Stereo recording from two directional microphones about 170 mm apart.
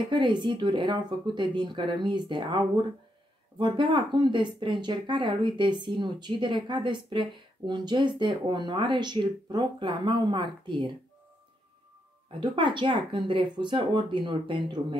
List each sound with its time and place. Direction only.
0.1 s speech: 25° right (ahead or behind)
12.4 s speech: 30° right (ahead or behind)